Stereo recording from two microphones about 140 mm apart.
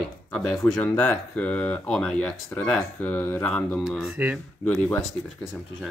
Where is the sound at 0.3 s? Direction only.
5° left (ahead or behind).